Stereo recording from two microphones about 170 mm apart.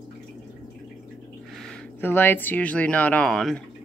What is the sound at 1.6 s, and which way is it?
Speech, 10° left (ahead or behind).